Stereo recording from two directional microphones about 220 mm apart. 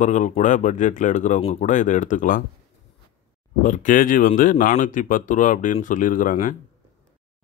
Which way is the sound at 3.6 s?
35° left (ahead or behind).